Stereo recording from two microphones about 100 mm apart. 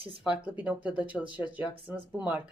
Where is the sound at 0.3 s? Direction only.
15° right (ahead or behind).